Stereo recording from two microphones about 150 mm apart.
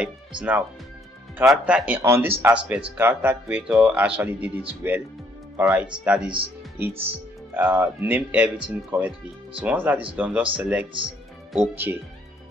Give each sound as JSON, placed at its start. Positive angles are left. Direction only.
{"t": 0.0, "sound": "speech", "side_deg": -10}